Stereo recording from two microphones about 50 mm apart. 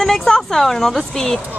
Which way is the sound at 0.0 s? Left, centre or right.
Centre.